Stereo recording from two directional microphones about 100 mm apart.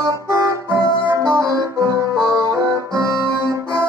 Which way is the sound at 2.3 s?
30° right (ahead or behind).